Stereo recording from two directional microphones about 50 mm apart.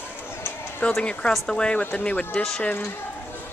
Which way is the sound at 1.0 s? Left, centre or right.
Left.